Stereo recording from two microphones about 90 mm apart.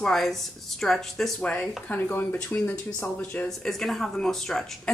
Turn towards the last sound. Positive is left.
turn(degrees=5)  # may be behind; listen again after turning